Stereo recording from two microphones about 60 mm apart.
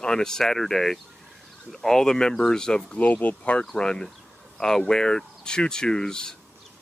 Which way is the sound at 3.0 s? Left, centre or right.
Left.